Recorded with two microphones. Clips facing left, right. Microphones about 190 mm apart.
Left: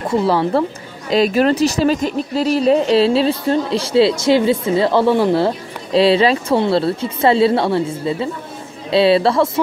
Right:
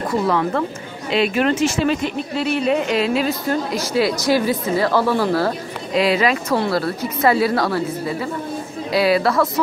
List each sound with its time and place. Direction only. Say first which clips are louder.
0.1 s a woman's voice: left 4 dB; 30° left (ahead or behind)